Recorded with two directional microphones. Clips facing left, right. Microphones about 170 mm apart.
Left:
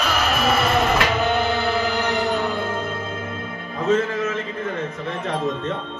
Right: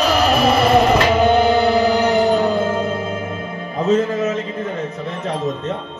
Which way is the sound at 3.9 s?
40° right (ahead or behind).